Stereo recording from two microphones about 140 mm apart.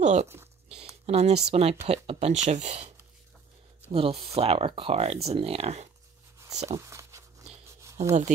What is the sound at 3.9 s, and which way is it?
Speech, 40° right (ahead or behind).